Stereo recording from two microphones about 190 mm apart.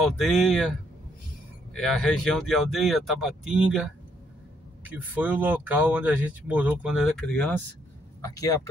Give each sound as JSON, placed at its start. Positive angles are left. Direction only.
{"t": 0.3, "sound": "speech", "side_deg": 0}
{"t": 4.9, "sound": "speech", "side_deg": -10}
{"t": 8.2, "sound": "speech", "side_deg": 20}